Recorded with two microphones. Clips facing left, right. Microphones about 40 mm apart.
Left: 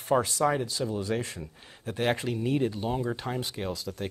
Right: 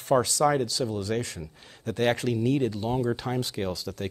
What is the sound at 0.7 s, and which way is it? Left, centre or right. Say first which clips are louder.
Speech: right 1 dB; left.